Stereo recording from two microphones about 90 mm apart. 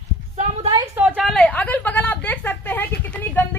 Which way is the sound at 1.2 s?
Centre (ahead or behind).